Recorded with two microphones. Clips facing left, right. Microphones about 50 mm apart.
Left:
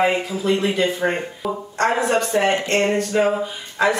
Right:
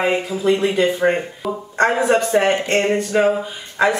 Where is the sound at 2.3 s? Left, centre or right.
Right.